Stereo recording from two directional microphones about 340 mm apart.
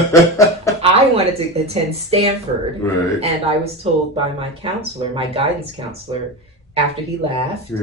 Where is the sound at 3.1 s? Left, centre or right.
Centre.